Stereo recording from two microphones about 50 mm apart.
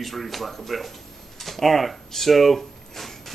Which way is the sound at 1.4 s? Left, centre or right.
Centre.